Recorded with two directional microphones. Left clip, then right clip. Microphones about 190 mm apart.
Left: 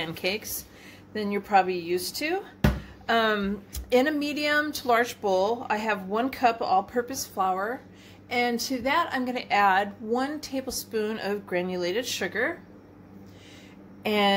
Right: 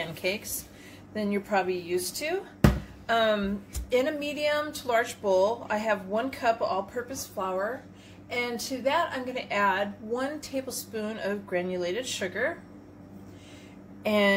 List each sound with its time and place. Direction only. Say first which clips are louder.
0.0 s a woman's voice: left 1 dB; 50° left (ahead or behind)
14.0 s a woman's voice: even; 50° left (ahead or behind)